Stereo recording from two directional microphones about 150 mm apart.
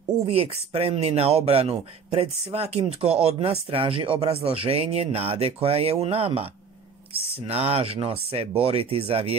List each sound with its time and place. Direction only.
0.3 s speech: 40° right (ahead or behind)